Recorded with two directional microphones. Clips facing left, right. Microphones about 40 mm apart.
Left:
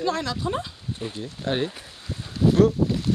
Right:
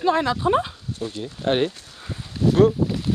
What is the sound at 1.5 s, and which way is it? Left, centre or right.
Speech, right.